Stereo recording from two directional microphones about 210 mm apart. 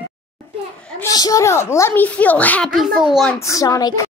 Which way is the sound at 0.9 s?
15° left (ahead or behind).